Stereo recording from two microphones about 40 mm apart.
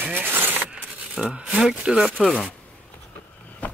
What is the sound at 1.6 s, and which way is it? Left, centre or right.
Speech, centre.